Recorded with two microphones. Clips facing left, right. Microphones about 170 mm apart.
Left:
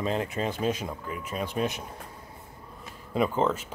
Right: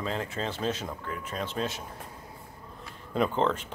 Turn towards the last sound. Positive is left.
turn(degrees=5)  # may be behind; listen again after turning